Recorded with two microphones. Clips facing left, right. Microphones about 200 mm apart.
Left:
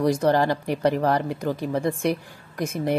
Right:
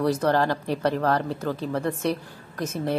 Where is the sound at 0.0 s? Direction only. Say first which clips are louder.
Left 2 dB; 15° left (ahead or behind).